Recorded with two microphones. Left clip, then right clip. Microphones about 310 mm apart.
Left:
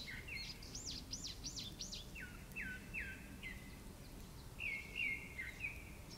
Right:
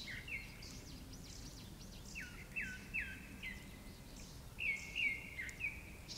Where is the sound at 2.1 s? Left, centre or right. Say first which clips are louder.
Right 4 dB; centre.